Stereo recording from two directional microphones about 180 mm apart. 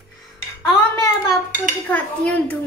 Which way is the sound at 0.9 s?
15° left (ahead or behind).